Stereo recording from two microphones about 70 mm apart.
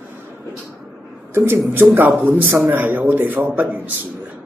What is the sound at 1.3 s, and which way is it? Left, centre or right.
A man's voice, right.